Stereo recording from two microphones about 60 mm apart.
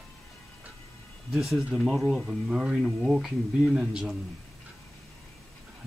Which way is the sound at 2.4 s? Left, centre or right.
Centre.